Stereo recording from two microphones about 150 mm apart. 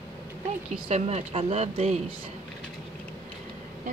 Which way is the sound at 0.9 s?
45° right (ahead or behind).